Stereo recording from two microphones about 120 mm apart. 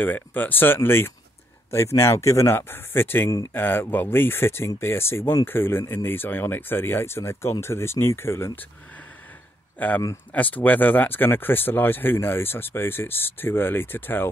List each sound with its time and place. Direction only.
0.0 s speech: 15° left (ahead or behind)
9.8 s speech: 15° left (ahead or behind)